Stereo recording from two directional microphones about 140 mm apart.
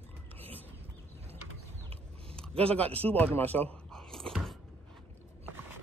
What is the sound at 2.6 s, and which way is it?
Speech, 10° left (ahead or behind).